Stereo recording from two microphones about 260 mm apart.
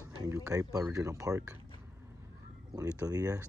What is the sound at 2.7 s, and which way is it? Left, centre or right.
Speech, centre.